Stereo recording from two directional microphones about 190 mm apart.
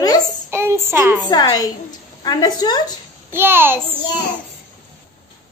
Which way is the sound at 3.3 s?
10° right (ahead or behind).